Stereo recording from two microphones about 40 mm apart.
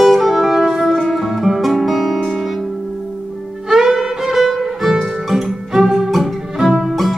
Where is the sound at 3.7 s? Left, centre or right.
Centre.